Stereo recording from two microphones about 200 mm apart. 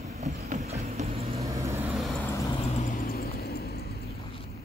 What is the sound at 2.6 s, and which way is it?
Vehicle, 30° left (ahead or behind).